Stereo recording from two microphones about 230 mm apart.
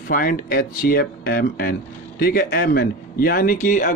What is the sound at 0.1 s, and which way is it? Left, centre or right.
Speech, left.